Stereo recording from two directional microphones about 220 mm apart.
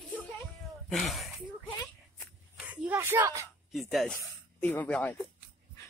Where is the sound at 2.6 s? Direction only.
5° right (ahead or behind).